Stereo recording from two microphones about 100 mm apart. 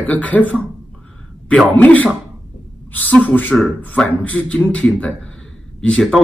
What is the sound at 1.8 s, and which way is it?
Speech, 15° left (ahead or behind).